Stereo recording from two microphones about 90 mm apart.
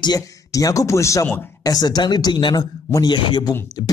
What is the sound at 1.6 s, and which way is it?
A man's voice, 45° left (ahead or behind).